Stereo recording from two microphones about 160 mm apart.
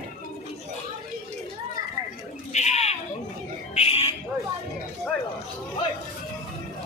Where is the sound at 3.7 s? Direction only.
40° left (ahead or behind).